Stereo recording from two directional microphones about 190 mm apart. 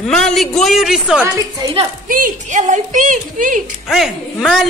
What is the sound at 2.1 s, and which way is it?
A woman's voice, 45° right (ahead or behind).